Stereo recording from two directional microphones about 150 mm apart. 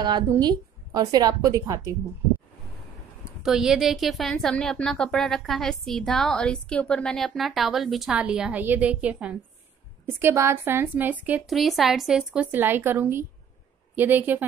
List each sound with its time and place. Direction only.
0.3 s a woman's voice: 25° right (ahead or behind)
3.3 s a woman's voice: 5° right (ahead or behind)
11.4 s a woman's voice: centre (ahead or behind)